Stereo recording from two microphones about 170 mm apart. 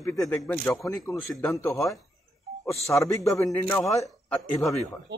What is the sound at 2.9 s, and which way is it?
A man's voice, 15° left (ahead or behind).